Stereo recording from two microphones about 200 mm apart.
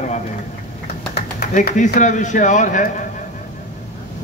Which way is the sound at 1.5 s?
40° left (ahead or behind).